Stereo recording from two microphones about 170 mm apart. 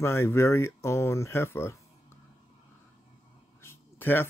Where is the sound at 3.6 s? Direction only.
15° left (ahead or behind).